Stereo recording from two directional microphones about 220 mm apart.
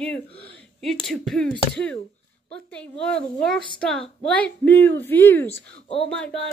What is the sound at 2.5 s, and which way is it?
A woman's voice, 5° left (ahead or behind).